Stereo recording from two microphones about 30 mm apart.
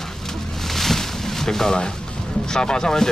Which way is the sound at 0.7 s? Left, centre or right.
Centre.